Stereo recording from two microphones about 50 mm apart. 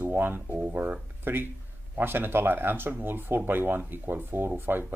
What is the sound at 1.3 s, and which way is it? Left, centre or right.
Speech, right.